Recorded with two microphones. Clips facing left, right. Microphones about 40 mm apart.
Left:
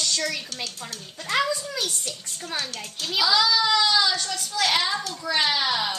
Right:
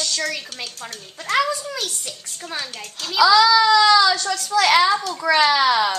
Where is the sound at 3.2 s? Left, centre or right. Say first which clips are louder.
Right 8 dB; right.